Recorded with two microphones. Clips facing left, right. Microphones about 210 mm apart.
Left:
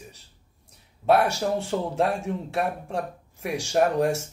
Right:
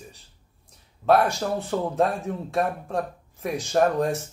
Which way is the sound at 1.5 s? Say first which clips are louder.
Right 1 dB; 10° left (ahead or behind).